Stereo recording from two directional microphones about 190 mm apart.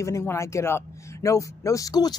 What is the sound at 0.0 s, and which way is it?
Speech, 15° left (ahead or behind).